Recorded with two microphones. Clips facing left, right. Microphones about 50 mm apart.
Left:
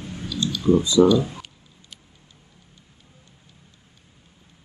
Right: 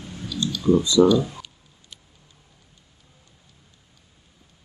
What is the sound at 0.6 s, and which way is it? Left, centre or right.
Speech, left.